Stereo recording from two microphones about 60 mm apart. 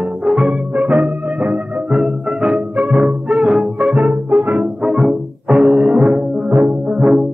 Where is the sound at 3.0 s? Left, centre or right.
Centre.